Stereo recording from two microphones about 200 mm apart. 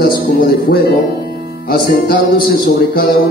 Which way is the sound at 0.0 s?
50° left (ahead or behind).